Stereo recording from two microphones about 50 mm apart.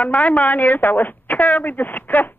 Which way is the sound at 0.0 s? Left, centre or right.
Left.